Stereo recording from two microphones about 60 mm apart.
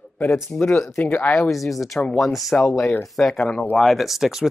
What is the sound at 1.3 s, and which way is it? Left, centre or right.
Speech, centre.